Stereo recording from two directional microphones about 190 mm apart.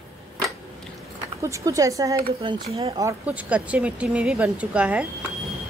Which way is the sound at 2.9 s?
10° right (ahead or behind).